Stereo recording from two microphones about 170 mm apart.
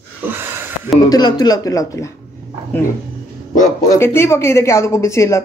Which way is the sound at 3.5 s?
45° left (ahead or behind).